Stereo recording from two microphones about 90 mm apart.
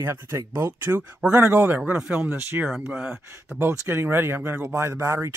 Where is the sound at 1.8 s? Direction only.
10° right (ahead or behind).